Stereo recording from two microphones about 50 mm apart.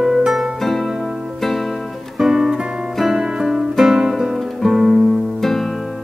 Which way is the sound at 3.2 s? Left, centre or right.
Centre.